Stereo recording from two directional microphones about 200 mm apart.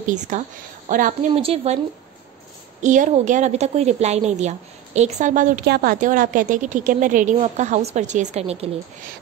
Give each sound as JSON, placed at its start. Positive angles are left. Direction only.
{"t": 0.0, "sound": "a woman's voice", "side_deg": -40}
{"t": 1.3, "sound": "speech", "side_deg": -30}
{"t": 2.8, "sound": "a woman's voice", "side_deg": -40}